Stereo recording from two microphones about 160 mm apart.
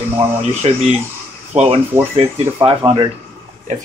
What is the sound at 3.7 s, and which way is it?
Speech, 50° right (ahead or behind).